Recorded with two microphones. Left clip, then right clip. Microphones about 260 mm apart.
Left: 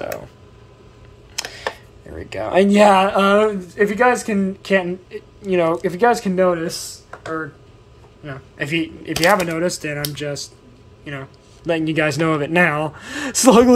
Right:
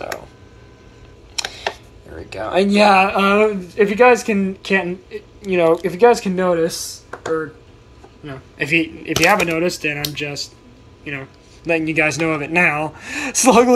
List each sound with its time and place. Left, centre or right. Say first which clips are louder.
2.0 s speech: left 1 dB; left; by 6.8 s centre
8.2 s a man's voice: right 2 dB; centre; by 13.7 s left